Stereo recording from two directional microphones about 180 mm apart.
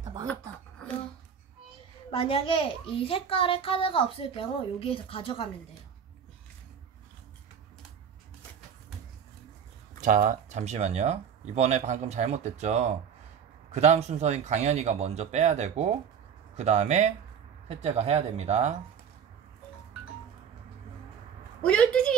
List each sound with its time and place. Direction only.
0.0 s a sound: 20° right (ahead or behind)
0.3 s speech: 5° left (ahead or behind)
2.0 s a child's voice: 30° left (ahead or behind)
9.9 s speech: 45° right (ahead or behind)
21.6 s a woman's voice: 5° left (ahead or behind)